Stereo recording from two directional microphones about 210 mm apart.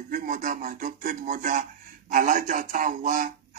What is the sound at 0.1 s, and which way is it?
A man's voice, 40° right (ahead or behind).